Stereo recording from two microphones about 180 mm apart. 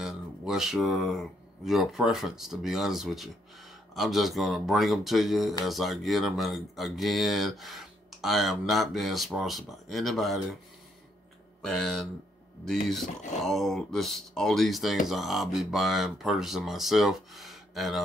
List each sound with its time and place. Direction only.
0.0 s speech: centre (ahead or behind)
11.6 s speech: centre (ahead or behind)
13.0 s speech: 40° left (ahead or behind)
13.4 s speech: centre (ahead or behind)